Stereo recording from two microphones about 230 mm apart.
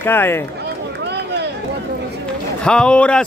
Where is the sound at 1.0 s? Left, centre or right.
Right.